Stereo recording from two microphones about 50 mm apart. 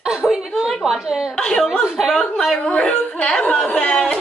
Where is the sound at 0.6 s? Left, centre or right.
Centre.